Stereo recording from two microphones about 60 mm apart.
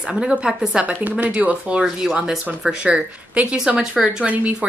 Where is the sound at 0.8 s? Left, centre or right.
Right.